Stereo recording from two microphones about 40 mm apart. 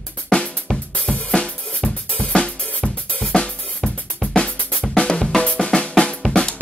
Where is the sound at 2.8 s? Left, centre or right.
Left.